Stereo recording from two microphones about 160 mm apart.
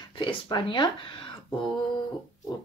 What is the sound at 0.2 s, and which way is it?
Speech, 30° left (ahead or behind).